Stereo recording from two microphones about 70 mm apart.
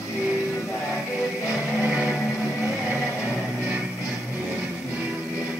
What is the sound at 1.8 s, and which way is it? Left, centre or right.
Music, centre.